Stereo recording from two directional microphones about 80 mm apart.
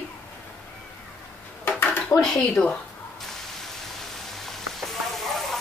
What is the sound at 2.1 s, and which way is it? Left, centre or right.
Speech, centre.